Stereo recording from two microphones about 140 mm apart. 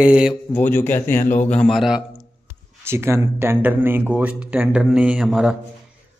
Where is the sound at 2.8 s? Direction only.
15° right (ahead or behind).